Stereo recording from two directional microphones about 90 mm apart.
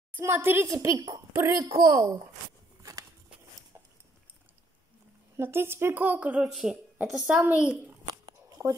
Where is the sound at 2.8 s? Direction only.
35° right (ahead or behind).